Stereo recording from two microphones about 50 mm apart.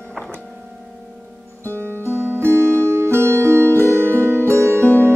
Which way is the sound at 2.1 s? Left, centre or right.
Right.